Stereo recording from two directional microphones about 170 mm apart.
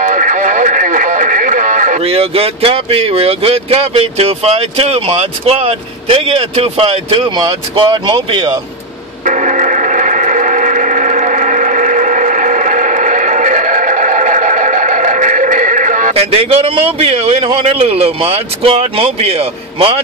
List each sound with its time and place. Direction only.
0.0 s radio: 50° right (ahead or behind)
2.0 s speech: 35° right (ahead or behind)
9.2 s a sound: 45° right (ahead or behind)
16.1 s speech: 35° right (ahead or behind)